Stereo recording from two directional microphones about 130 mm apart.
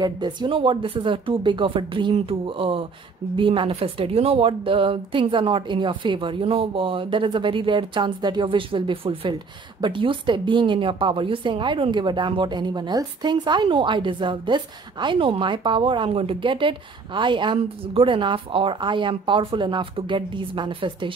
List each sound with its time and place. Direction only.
0.0 s a woman's voice: 35° right (ahead or behind)